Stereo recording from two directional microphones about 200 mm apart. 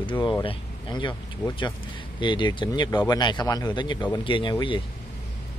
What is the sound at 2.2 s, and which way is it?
Speech, 20° left (ahead or behind).